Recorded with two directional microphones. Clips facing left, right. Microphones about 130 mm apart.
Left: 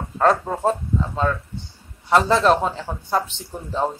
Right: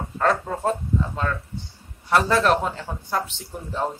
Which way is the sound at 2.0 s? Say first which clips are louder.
Left 3 dB; 20° left (ahead or behind).